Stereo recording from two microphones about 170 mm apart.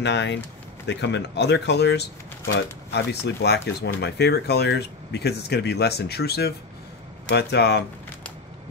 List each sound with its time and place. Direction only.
0.0 s speech: 90° left